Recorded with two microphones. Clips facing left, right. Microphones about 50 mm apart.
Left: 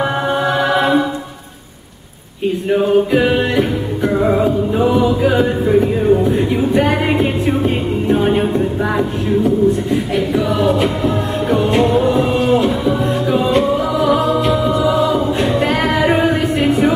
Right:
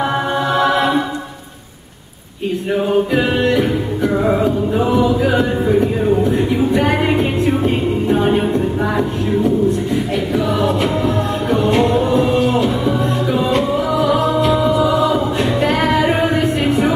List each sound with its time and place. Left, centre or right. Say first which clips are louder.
0.5 s choir: even; centre
3.1 s music: left 1 dB; centre
10.3 s music: left 1 dB; centre
14.1 s choir: even; centre
15.3 s music: left 1 dB; centre